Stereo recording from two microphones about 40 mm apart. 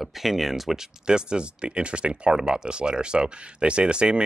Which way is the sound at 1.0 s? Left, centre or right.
Right.